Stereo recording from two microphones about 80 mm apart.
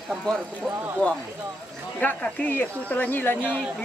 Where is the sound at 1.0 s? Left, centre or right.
Centre.